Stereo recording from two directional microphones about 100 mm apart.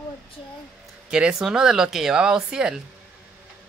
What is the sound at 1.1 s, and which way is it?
Speech, 10° right (ahead or behind).